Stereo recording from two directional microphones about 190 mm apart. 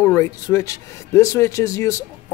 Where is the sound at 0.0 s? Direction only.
15° left (ahead or behind).